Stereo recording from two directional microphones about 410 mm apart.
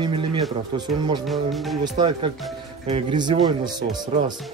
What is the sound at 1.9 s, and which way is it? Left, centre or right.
Speech, centre.